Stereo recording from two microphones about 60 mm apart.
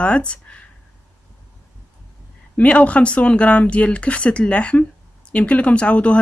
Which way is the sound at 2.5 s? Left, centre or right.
Left.